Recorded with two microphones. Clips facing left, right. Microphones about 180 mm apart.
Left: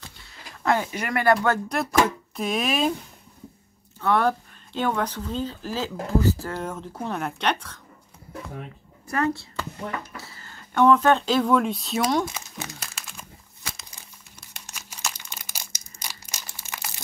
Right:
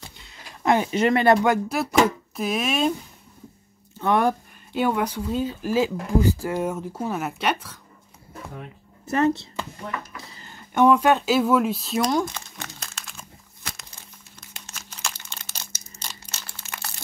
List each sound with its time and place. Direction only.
0.2 s a sound: 20° right (ahead or behind)
1.7 s speech: 5° right (ahead or behind)
4.0 s speech: 15° right (ahead or behind)
9.0 s speech: 20° right (ahead or behind)
10.1 s a sound: 20° right (ahead or behind); by 13.3 s 5° left (ahead or behind)
14.7 s crumpling: 10° left (ahead or behind)